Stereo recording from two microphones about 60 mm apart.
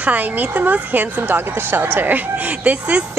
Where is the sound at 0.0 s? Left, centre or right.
Right.